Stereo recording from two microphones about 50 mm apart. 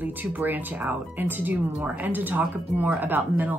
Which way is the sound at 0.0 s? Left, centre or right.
Right.